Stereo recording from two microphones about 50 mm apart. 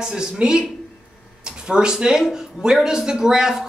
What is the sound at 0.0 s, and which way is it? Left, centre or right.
Speech, centre.